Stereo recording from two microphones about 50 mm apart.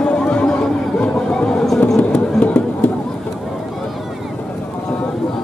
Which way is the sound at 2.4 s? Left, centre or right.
Left.